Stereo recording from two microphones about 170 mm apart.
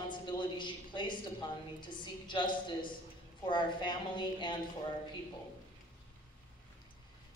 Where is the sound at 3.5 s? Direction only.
25° left (ahead or behind).